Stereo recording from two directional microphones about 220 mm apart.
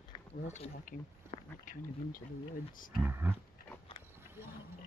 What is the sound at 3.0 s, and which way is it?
Speech, 10° right (ahead or behind).